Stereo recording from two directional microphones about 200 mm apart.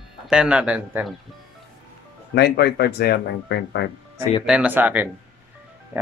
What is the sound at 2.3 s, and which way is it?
Speech, 55° left (ahead or behind).